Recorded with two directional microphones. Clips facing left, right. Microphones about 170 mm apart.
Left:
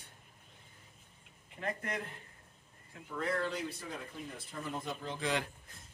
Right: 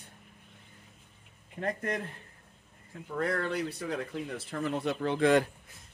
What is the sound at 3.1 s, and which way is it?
Speech, 60° right (ahead or behind).